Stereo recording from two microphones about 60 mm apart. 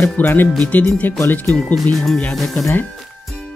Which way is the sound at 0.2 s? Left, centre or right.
Left.